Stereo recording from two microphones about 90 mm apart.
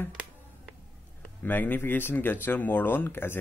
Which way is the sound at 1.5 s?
20° left (ahead or behind).